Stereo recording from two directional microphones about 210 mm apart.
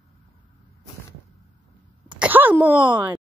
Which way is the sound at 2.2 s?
10° right (ahead or behind).